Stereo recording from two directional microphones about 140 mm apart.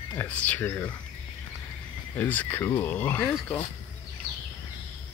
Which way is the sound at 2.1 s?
15° left (ahead or behind).